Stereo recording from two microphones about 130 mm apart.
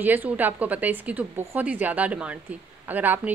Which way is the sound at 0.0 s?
15° right (ahead or behind).